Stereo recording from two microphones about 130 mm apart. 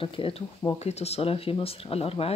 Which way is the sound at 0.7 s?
55° left (ahead or behind).